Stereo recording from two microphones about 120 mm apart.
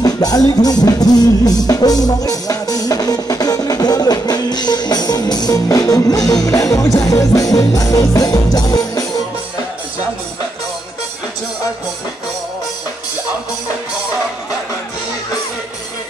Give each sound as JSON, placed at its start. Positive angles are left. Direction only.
{"t": 0.0, "sound": "music", "side_deg": 35}